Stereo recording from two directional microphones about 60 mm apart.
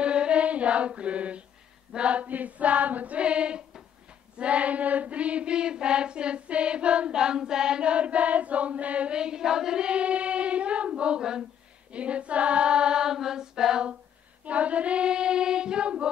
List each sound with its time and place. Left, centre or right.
0.0 s mantra: centre
2.0 s child singing: right
11.9 s choir: centre
14.4 s child singing: right